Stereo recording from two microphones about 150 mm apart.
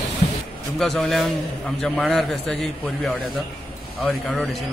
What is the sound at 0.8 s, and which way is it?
A man's voice, centre (ahead or behind).